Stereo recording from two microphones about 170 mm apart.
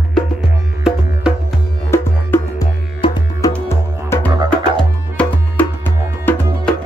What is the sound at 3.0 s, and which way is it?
Music, 25° left (ahead or behind).